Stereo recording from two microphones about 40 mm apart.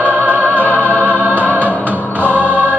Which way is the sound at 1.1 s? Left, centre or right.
Right.